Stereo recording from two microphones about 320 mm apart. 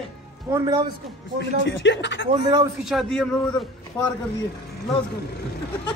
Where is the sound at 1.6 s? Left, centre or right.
Left.